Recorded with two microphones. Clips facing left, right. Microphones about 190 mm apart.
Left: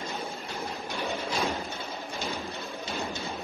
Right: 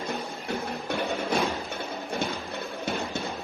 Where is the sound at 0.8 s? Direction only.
55° right (ahead or behind).